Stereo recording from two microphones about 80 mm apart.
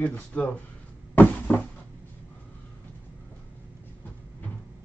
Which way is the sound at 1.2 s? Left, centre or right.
Left.